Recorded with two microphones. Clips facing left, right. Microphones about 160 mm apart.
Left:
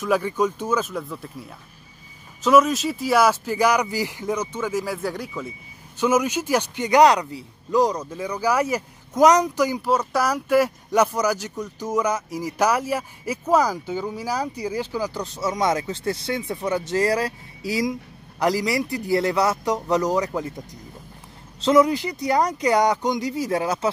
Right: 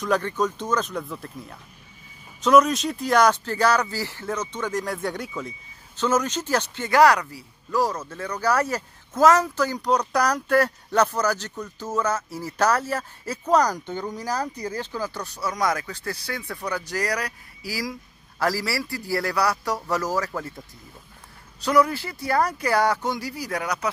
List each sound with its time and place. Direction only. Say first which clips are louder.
0.0 s speech: left 2 dB; 10° left (ahead or behind)
5.9 s speech: left 3 dB; 10° left (ahead or behind)
21.5 s speech: left 4 dB; 20° left (ahead or behind)